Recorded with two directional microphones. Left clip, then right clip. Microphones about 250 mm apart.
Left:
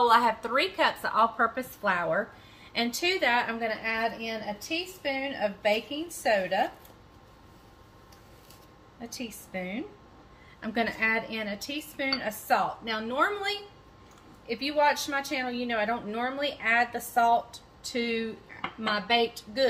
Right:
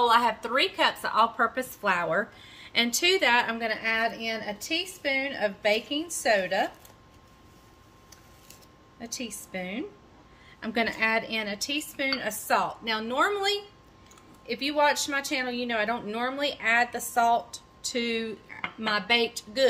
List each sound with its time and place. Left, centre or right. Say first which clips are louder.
0.0 s a woman's voice: even; centre; by 6.7 s right
9.0 s a woman's voice: right 3 dB; right